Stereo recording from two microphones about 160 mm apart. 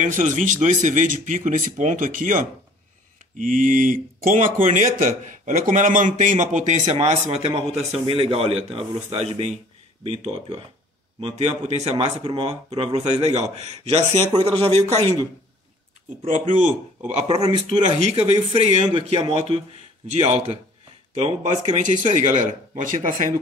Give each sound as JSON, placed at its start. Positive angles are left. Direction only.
{"t": 0.0, "sound": "a man's voice", "side_deg": -55}
{"t": 16.3, "sound": "a man's voice", "side_deg": -55}